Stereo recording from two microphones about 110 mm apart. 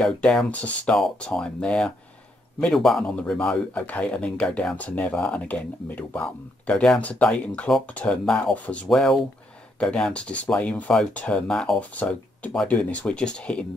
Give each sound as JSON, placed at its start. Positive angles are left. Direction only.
{"t": 0.0, "sound": "speech", "side_deg": 5}